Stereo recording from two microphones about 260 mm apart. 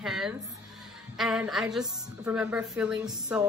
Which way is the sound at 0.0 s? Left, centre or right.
Centre.